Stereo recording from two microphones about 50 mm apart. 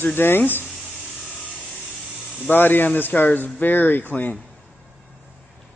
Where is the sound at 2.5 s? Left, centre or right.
Left.